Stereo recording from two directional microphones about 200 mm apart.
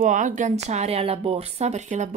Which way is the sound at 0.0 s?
40° right (ahead or behind).